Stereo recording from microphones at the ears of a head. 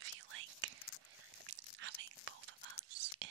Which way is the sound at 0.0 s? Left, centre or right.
Right.